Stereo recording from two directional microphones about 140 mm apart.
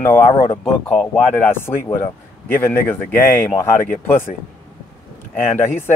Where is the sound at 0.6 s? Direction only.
Centre (ahead or behind).